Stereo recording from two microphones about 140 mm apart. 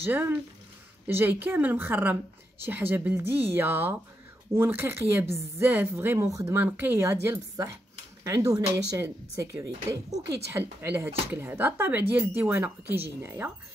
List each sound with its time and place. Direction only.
0.0 s a woman's voice: 15° right (ahead or behind)